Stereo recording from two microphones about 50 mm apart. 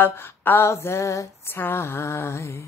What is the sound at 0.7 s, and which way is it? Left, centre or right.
Speech, left.